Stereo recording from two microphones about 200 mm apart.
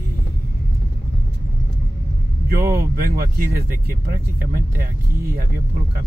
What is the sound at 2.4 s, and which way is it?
Speech, 50° right (ahead or behind).